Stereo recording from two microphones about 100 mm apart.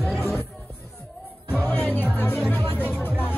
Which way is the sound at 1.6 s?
15° left (ahead or behind).